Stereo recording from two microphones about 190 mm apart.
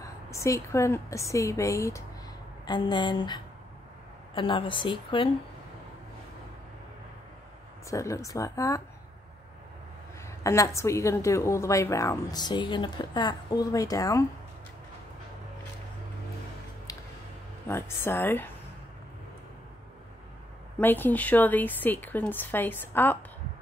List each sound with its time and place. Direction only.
0.0 s a woman's voice: 15° left (ahead or behind)
4.4 s speech: 25° left (ahead or behind)
7.9 s a woman's voice: 15° left (ahead or behind)
10.2 s a woman's voice: 15° left (ahead or behind)
17.6 s a woman's voice: 15° left (ahead or behind)
20.8 s a woman's voice: 10° left (ahead or behind)